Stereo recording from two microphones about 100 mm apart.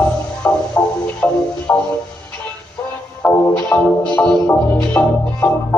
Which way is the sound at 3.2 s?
15° left (ahead or behind).